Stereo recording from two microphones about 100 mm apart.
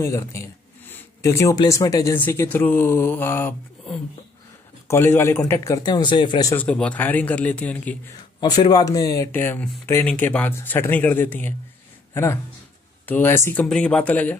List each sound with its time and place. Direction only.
0.0 s a sound: 30° left (ahead or behind)
1.7 s speech: 35° left (ahead or behind)
2.1 s speech: 15° left (ahead or behind)
5.8 s speech: 45° left (ahead or behind)
6.5 s a man's voice: 15° left (ahead or behind)
8.4 s speech: 45° left (ahead or behind)
9.3 s speech: 20° left (ahead or behind)
10.0 s speech: 10° left (ahead or behind)
12.1 s speech: 30° left (ahead or behind)
13.7 s a man's voice: 10° left (ahead or behind)